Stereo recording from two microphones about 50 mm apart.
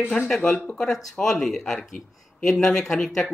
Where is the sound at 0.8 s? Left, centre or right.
Centre.